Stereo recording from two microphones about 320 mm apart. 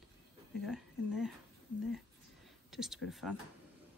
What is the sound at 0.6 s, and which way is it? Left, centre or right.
Speech, centre.